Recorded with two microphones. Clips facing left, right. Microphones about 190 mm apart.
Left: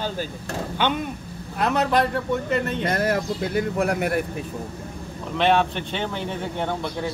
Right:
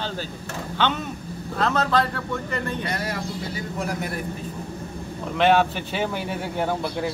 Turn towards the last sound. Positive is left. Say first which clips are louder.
# right 2 dB
turn(degrees=-5)  # may be behind; listen again after turning